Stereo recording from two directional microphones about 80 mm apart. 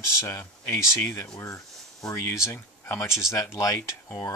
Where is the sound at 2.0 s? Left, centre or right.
Left.